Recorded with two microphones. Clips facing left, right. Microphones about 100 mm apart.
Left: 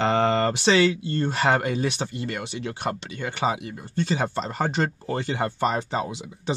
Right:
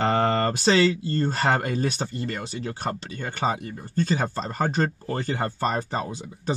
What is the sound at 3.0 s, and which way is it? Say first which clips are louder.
Speech: left 1 dB; 35° right (ahead or behind).